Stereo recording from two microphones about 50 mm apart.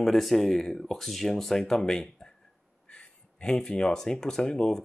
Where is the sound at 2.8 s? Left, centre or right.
Left.